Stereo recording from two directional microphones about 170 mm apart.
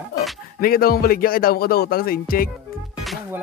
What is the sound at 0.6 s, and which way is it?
Speech, 60° left (ahead or behind).